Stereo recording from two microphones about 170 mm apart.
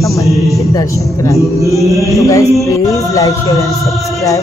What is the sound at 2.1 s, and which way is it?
Music, 20° left (ahead or behind).